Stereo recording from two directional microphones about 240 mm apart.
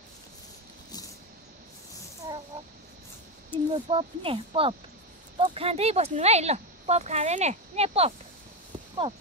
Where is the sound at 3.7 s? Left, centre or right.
Right.